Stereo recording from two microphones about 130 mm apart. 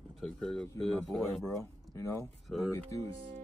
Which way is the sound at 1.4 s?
20° left (ahead or behind).